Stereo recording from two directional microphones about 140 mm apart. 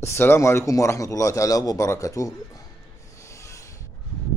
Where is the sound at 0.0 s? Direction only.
15° left (ahead or behind).